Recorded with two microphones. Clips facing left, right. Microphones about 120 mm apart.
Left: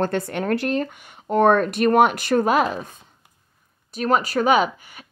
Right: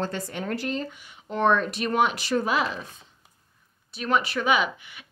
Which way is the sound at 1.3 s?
50° left (ahead or behind).